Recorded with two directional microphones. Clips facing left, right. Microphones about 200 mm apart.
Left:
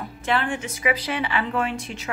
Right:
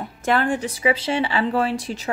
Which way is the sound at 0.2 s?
45° right (ahead or behind).